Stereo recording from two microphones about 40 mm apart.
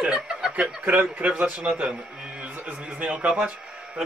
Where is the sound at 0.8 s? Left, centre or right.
Right.